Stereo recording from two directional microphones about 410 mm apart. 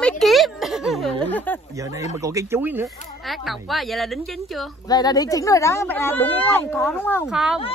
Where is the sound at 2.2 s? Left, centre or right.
Centre.